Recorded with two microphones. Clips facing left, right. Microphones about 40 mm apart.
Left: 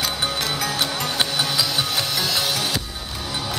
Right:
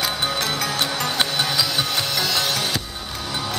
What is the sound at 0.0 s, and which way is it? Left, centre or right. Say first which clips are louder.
Music: right 1 dB; centre.